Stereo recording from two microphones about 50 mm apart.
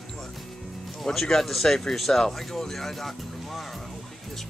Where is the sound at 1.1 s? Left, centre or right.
Centre.